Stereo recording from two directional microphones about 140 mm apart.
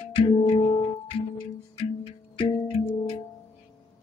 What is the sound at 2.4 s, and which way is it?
Music, 40° left (ahead or behind).